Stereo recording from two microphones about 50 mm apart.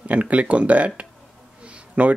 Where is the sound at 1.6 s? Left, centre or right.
Right.